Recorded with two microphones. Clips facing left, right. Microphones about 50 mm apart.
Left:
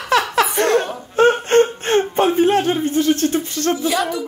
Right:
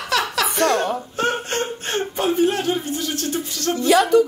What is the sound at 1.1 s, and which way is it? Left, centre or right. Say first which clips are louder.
Whimper: left 12 dB; left.